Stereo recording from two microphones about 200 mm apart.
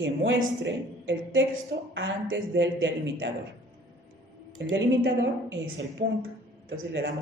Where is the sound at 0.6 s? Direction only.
65° right (ahead or behind).